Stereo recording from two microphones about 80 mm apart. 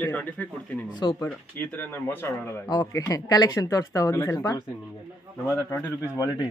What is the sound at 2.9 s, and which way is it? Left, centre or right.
Speech, left.